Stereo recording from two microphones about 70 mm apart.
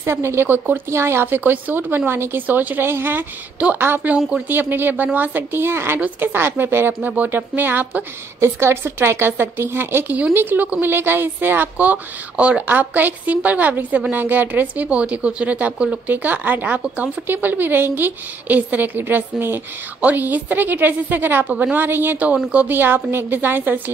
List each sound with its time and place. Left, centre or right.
0.0 s speech: right
8.4 s speech: right